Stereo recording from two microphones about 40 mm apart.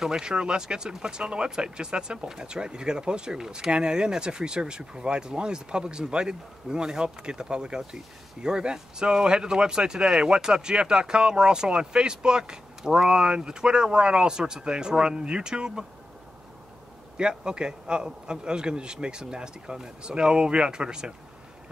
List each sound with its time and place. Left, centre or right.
0.0 s speech: centre
17.2 s speech: right